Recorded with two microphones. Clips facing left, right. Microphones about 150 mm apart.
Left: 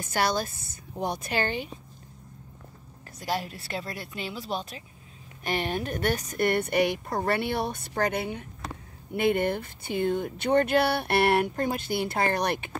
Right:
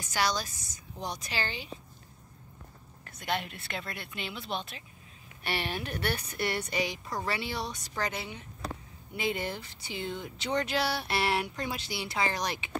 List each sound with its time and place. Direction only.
0.0 s speech: 55° left (ahead or behind)
3.2 s a woman's voice: 35° left (ahead or behind); by 12.7 s 55° left (ahead or behind)